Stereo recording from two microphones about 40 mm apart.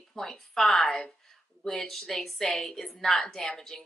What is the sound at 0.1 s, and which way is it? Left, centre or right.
Speech, centre.